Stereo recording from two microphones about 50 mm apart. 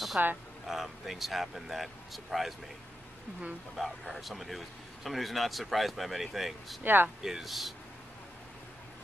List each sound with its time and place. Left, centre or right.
0.2 s speech: right
0.7 s speech: centre
3.7 s speech: centre
6.8 s speech: right
7.2 s speech: centre